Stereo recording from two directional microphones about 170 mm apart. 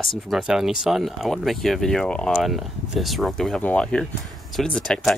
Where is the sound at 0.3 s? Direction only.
5° right (ahead or behind).